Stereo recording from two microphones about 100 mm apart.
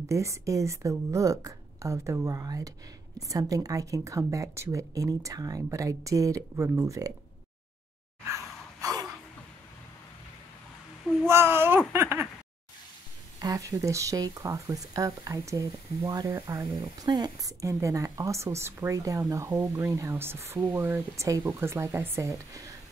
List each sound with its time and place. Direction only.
0.0 s speech: 30° right (ahead or behind)
8.8 s a sound: 35° right (ahead or behind)
11.2 s a child's voice: 25° right (ahead or behind)
13.4 s speech: 35° right (ahead or behind)